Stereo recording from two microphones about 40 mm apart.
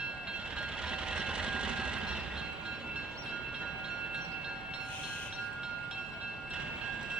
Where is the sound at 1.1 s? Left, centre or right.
Right.